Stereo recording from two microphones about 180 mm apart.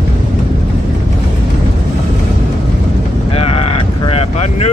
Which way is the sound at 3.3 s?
35° left (ahead or behind).